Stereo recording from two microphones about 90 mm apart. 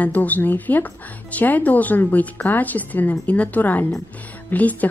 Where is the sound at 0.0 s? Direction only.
15° left (ahead or behind).